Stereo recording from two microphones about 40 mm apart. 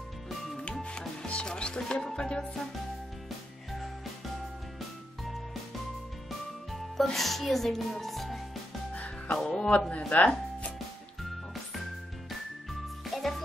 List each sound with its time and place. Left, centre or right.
0.8 s music: left
3.3 s music: centre
6.7 s speech: centre
8.9 s music: left
9.5 s a man's voice: left
13.0 s music: centre